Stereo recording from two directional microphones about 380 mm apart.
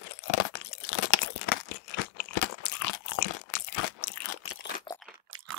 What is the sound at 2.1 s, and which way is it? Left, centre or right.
Crunch, left.